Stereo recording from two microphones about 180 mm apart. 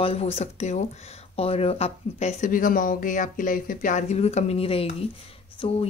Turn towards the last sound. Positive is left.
turn(degrees=35)  # may be behind; listen again after turning